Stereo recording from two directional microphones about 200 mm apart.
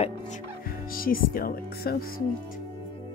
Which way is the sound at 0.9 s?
45° left (ahead or behind).